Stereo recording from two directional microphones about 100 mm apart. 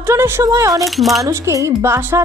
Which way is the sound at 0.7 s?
Centre (ahead or behind).